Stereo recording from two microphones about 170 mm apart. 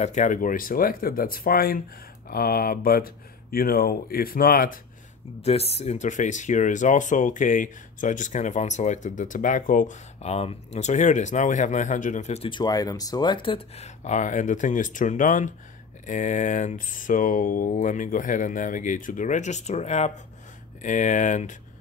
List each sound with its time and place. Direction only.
0.0 s speech: 45° left (ahead or behind)
5.4 s speech: 35° left (ahead or behind)